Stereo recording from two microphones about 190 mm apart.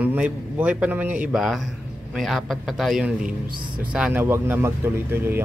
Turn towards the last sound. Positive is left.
turn(degrees=-10)  # may be behind; listen again after turning